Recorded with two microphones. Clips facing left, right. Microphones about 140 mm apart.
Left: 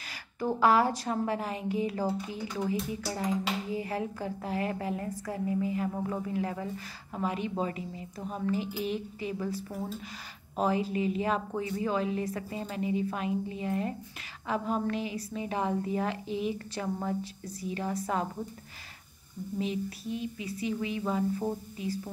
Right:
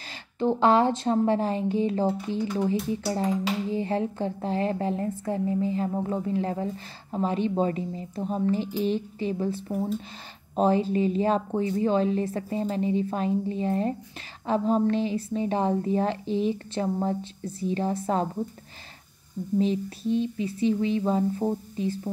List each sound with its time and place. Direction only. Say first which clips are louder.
0.4 s a woman's voice: right 4 dB; 25° right (ahead or behind)
9.7 s speech: right 8 dB; 15° right (ahead or behind)
10.5 s a woman's voice: right 6 dB; 30° right (ahead or behind)
19.6 s a woman's voice: right 5 dB; 30° right (ahead or behind)